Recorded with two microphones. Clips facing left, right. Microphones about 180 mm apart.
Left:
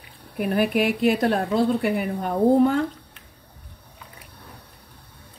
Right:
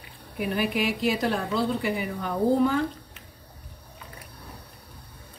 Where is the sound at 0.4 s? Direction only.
55° left (ahead or behind).